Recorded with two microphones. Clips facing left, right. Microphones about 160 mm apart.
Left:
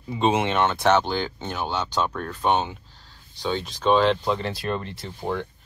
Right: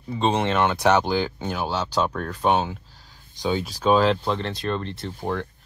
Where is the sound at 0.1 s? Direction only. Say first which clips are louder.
Even; 10° left (ahead or behind).